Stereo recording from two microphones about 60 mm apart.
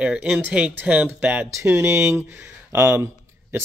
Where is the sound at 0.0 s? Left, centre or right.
Centre; by 1.5 s right.